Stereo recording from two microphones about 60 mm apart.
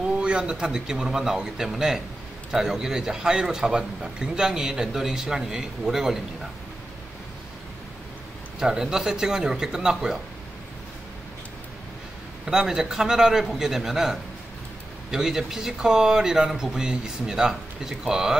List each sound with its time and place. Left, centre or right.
0.0 s a man's voice: centre
8.5 s a man's voice: centre
12.4 s a man's voice: centre